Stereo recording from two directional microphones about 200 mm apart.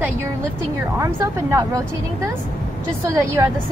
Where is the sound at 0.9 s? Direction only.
15° right (ahead or behind).